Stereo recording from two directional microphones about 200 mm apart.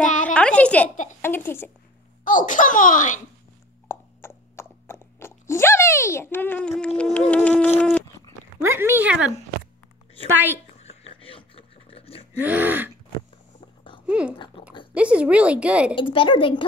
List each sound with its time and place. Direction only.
0.0 s a sound: 40° left (ahead or behind)
0.3 s a woman's voice: 5° left (ahead or behind)
2.2 s speech: 40° left (ahead or behind)
3.9 s a sound: 10° left (ahead or behind)
7.0 s insect: 5° left (ahead or behind)
8.5 s speech: 10° right (ahead or behind)
10.3 s speech: 10° right (ahead or behind)
10.8 s a sound: 30° left (ahead or behind)
12.4 s speech: 10° right (ahead or behind)
14.0 s a sound: 5° right (ahead or behind)
15.0 s speech: 5° right (ahead or behind)
15.9 s speech: 25° left (ahead or behind)